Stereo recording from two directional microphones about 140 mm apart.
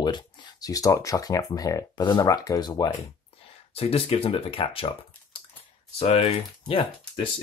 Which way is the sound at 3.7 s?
45° left (ahead or behind).